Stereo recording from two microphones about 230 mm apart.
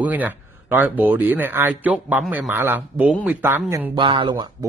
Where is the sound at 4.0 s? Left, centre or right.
Right.